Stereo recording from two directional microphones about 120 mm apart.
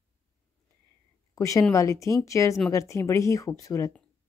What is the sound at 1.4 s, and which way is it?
A woman's voice, 25° left (ahead or behind).